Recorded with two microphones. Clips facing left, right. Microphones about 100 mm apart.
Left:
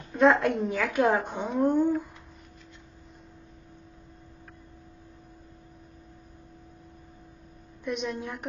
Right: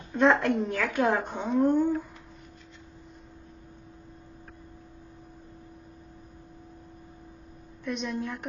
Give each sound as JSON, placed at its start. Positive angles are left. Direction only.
{"t": 0.1, "sound": "a woman's voice", "side_deg": 0}
{"t": 7.8, "sound": "a woman's voice", "side_deg": 10}